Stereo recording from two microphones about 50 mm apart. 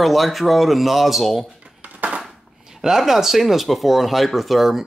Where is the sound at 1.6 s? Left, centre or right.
Right.